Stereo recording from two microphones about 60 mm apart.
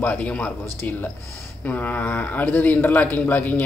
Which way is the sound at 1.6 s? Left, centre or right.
Left.